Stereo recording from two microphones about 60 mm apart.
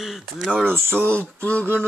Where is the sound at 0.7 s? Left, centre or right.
Right.